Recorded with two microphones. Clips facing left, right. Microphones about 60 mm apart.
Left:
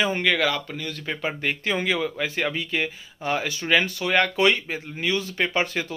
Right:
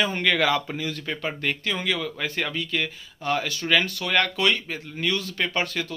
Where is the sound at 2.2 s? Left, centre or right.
Centre.